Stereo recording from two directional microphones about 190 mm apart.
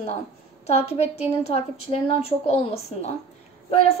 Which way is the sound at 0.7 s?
30° left (ahead or behind).